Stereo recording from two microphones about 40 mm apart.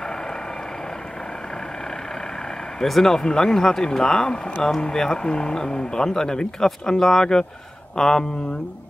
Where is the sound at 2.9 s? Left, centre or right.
Centre.